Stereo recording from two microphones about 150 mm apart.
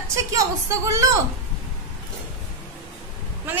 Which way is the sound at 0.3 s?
20° right (ahead or behind).